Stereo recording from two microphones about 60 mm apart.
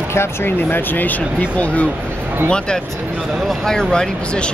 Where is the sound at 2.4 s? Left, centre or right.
Centre.